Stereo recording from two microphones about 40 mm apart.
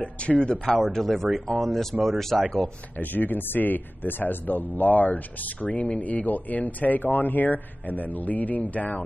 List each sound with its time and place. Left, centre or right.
0.0 s speech: left
0.8 s speech: centre
3.0 s speech: left